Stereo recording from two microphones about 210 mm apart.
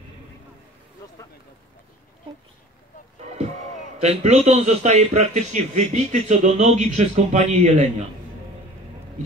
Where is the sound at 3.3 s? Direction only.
30° right (ahead or behind).